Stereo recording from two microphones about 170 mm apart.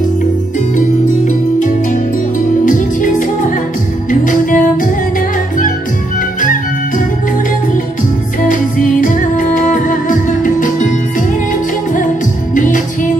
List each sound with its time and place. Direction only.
0.7 s music: 50° left (ahead or behind)
8.5 s music: 50° left (ahead or behind)